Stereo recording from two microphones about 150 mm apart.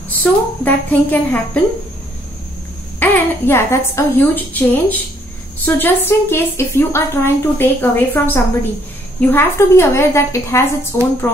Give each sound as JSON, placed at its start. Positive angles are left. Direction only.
{"t": 0.2, "sound": "a woman's voice", "side_deg": 10}
{"t": 3.0, "sound": "a woman's voice", "side_deg": 15}